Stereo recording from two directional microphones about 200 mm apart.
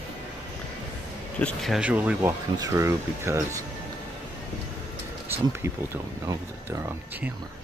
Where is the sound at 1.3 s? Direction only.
5° left (ahead or behind); by 3.6 s 15° right (ahead or behind).